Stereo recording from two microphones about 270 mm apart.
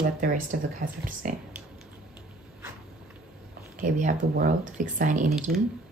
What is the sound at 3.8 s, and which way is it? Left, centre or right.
Speech, right.